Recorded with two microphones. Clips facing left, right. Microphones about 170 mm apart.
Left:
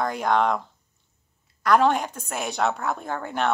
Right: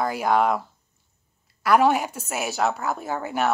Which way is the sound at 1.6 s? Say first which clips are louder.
Right 1 dB; 5° right (ahead or behind).